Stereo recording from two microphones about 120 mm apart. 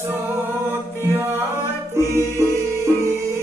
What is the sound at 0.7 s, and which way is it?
Mantra, 20° right (ahead or behind).